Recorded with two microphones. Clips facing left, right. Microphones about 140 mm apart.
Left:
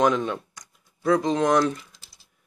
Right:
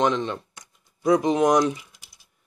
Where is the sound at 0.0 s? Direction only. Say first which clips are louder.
Left 1 dB; 5° left (ahead or behind).